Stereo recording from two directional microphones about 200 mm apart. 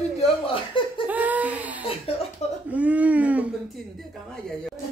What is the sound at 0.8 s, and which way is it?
Speech, 25° left (ahead or behind).